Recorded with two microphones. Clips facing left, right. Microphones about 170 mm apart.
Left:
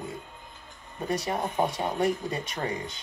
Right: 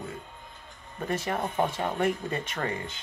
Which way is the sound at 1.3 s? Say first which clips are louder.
Even; 15° left (ahead or behind).